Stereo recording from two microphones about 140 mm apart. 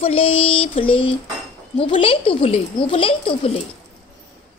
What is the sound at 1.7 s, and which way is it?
Speech, 40° left (ahead or behind).